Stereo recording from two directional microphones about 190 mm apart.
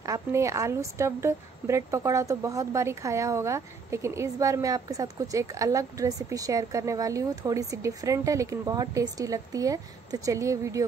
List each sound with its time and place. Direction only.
0.0 s a woman's voice: 15° right (ahead or behind)